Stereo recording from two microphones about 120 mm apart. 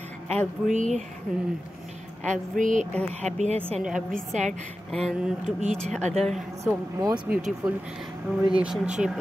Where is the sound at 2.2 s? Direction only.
90° right.